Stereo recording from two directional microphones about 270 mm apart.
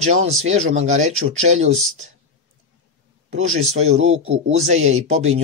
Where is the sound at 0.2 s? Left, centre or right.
Right.